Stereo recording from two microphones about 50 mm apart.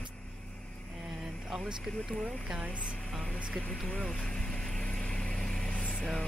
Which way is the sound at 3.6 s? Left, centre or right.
Centre.